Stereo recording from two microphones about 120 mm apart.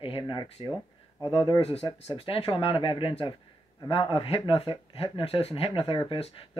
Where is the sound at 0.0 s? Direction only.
50° left (ahead or behind).